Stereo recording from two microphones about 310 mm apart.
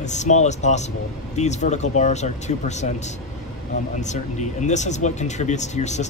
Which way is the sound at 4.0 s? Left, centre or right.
Left.